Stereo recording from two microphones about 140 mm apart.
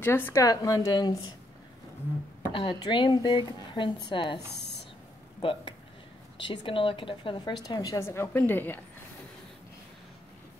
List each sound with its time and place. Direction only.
0.0 s a woman's voice: 15° left (ahead or behind)
2.5 s a woman's voice: 35° left (ahead or behind)
6.4 s a woman's voice: 35° left (ahead or behind); by 8.8 s 15° left (ahead or behind)